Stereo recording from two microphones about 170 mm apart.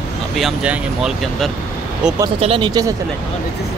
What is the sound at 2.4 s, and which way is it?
Speech, 30° right (ahead or behind).